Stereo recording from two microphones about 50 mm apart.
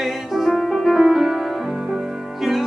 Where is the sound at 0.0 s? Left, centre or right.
Centre.